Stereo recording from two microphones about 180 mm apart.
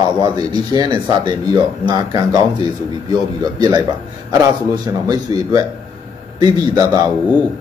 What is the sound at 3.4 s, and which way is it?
A man's voice, 20° right (ahead or behind).